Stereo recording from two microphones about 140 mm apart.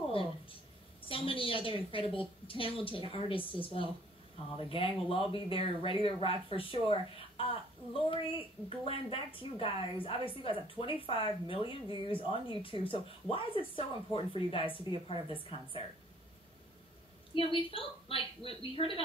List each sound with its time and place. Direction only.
0.1 s a sound: 40° left (ahead or behind)
1.0 s speech: 40° left (ahead or behind)
17.3 s speech: 40° left (ahead or behind)